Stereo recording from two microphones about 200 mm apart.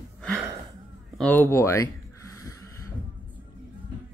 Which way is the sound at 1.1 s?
5° left (ahead or behind).